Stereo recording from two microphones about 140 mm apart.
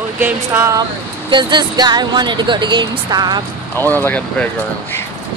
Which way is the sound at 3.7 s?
15° left (ahead or behind).